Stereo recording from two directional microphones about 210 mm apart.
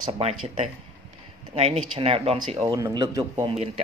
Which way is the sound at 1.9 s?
30° right (ahead or behind).